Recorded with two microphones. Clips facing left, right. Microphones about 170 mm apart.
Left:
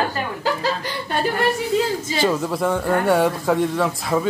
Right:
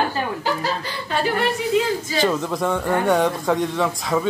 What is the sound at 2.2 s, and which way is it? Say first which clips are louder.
A man's voice: left 1 dB; 5° left (ahead or behind).